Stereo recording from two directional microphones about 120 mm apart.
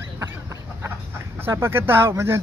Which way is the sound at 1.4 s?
20° right (ahead or behind).